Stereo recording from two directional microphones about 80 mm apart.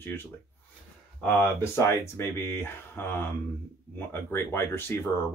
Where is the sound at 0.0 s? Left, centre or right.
Left.